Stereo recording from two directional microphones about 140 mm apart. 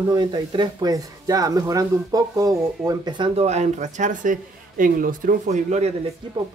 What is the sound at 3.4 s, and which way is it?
Speech, 55° right (ahead or behind).